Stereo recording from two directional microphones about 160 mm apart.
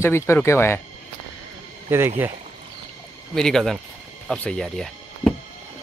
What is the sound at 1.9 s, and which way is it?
Speech, 15° right (ahead or behind).